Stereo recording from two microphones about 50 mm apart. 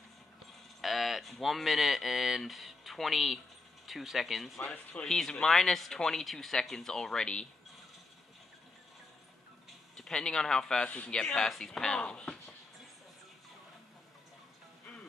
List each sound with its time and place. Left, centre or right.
0.7 s speech: centre
4.6 s speech: centre
9.9 s speech: centre
10.9 s speech: left
12.0 s a sound: centre